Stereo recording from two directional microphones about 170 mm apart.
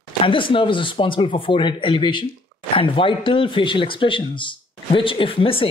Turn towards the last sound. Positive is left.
turn(degrees=30)  # may be behind; listen again after turning